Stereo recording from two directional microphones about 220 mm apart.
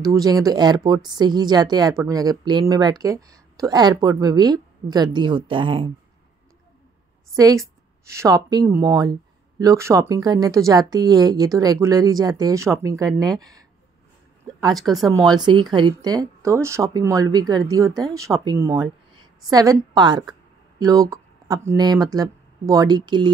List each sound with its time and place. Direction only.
0.1 s speech: 15° right (ahead or behind)
7.3 s a woman's voice: 15° right (ahead or behind)